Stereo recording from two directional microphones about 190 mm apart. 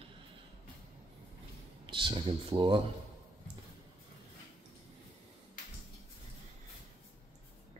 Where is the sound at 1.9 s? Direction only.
25° right (ahead or behind).